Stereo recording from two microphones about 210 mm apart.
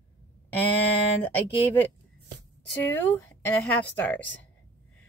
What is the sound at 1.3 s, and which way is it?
Speech, 10° left (ahead or behind).